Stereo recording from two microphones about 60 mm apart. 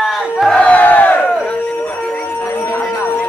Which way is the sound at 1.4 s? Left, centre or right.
Centre.